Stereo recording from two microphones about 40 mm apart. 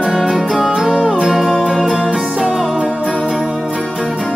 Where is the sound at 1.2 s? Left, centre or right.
Centre.